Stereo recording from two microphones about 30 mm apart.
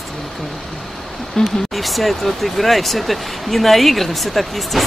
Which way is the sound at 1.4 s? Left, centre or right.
Left.